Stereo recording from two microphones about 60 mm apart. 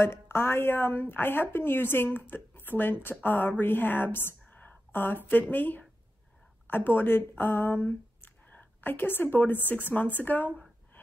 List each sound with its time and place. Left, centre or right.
0.0 s speech: left
8.5 s a sound: left
8.9 s speech: left